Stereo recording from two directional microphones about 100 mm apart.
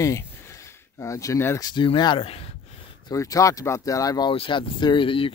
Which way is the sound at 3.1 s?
35° left (ahead or behind).